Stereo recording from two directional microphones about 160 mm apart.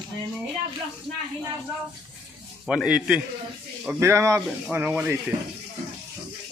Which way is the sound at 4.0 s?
15° right (ahead or behind).